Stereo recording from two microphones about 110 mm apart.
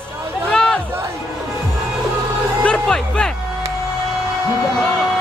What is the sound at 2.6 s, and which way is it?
Music, 10° left (ahead or behind).